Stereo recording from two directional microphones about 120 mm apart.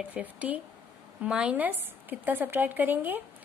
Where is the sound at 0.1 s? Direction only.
10° right (ahead or behind).